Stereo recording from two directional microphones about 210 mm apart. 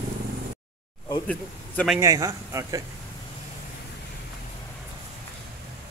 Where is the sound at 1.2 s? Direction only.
5° left (ahead or behind).